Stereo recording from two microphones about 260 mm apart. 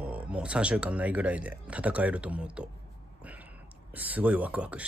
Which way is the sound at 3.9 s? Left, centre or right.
Centre.